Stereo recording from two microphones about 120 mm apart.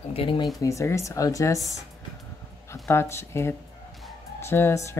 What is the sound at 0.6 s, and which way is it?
Speech, 25° left (ahead or behind).